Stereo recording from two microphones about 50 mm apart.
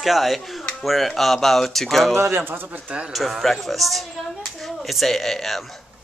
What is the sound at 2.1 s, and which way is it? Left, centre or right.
Speech, right.